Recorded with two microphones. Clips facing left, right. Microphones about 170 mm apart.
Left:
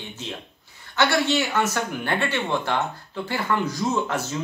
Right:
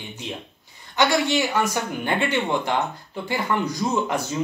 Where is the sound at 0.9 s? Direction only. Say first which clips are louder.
Right 1 dB; 15° right (ahead or behind).